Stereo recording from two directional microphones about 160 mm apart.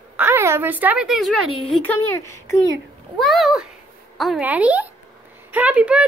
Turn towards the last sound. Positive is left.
turn(degrees=-10)  # may be behind; listen again after turning